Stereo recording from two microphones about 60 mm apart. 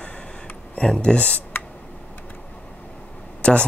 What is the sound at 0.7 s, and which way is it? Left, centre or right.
Speech, centre.